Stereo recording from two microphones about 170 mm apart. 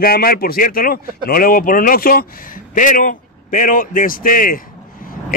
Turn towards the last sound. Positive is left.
turn(degrees=55)  # may be behind; listen again after turning